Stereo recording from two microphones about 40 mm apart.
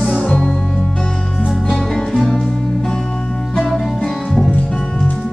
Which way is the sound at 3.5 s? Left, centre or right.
Centre.